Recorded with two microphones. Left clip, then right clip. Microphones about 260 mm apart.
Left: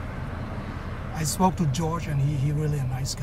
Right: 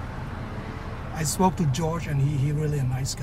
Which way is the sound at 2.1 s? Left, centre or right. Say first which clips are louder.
Right 1 dB; left.